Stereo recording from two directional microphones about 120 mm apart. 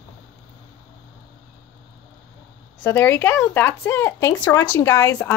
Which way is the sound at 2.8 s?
20° left (ahead or behind).